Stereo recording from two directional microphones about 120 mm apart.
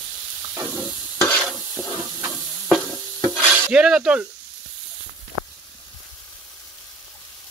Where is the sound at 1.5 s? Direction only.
10° right (ahead or behind).